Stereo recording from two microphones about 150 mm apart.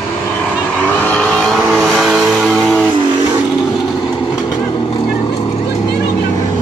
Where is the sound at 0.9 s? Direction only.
10° left (ahead or behind).